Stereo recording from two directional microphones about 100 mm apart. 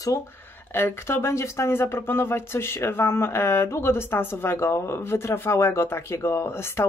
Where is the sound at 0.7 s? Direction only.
25° left (ahead or behind).